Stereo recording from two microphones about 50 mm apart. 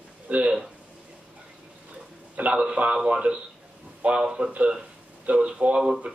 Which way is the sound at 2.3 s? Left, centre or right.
Right.